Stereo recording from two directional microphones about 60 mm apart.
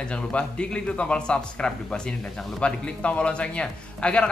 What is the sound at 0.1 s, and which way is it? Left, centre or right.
A man's voice, centre.